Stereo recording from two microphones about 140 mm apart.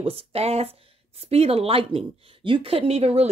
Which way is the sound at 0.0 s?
45° right (ahead or behind).